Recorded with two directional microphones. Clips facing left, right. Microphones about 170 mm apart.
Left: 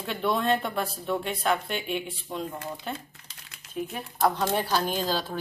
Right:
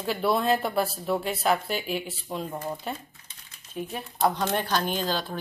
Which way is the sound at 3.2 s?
80° left.